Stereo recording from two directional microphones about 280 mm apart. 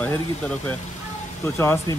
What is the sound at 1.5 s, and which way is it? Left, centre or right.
Speech, centre.